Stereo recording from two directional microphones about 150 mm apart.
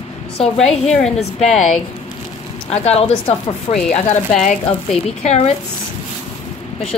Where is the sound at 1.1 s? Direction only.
45° left (ahead or behind).